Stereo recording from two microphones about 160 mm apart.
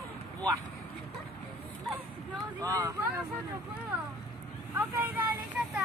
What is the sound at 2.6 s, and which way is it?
Vehicle, 20° right (ahead or behind).